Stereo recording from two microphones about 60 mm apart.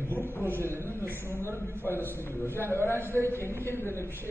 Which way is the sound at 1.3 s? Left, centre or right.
Right.